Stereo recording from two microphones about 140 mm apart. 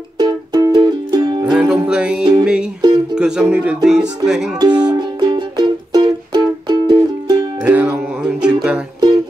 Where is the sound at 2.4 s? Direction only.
5° right (ahead or behind).